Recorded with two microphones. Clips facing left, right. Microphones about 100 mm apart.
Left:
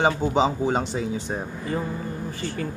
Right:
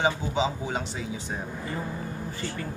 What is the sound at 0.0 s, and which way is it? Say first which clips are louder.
Speech: left 5 dB; 45° left (ahead or behind).